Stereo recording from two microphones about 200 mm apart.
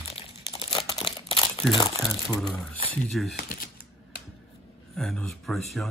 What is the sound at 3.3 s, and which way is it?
Speech, 45° left (ahead or behind).